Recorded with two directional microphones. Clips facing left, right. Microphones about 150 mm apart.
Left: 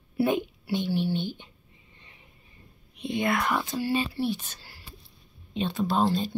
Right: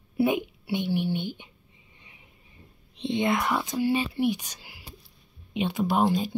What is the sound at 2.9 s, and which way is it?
Speech, 25° right (ahead or behind).